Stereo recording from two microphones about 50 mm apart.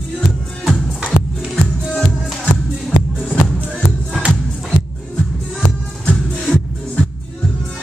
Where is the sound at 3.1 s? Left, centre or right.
Centre.